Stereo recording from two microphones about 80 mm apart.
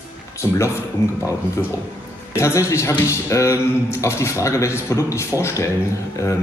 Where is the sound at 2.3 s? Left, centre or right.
Left.